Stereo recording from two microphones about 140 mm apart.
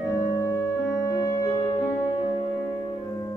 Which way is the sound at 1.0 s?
25° left (ahead or behind).